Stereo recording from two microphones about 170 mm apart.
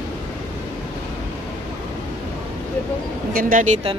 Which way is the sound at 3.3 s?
50° right (ahead or behind).